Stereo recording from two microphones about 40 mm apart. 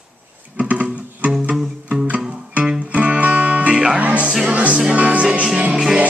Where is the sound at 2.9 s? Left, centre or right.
Right.